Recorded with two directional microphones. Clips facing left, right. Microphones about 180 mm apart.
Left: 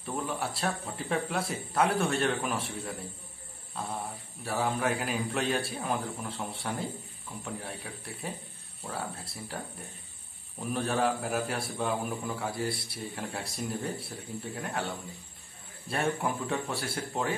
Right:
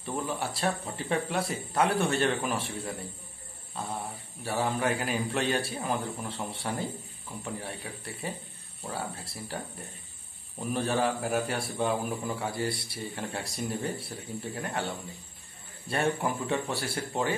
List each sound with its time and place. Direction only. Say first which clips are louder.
0.0 s a man's voice: right 1 dB; centre (ahead or behind)
3.8 s a man's voice: even; centre (ahead or behind)
10.7 s a man's voice: right 1 dB; centre (ahead or behind)
15.9 s a man's voice: right 2 dB; centre (ahead or behind)